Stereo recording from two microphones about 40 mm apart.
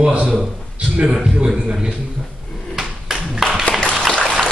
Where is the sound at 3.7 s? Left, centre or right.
Left.